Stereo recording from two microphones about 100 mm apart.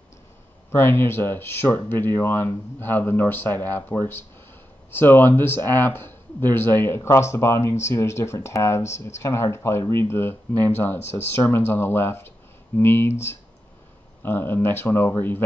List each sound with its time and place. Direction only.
0.7 s speech: 25° left (ahead or behind)
14.2 s speech: 20° left (ahead or behind)